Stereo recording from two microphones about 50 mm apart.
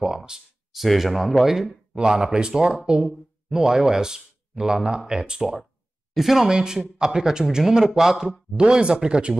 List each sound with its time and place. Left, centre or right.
0.0 s a sound: centre
0.8 s speech: centre
2.0 s speech: centre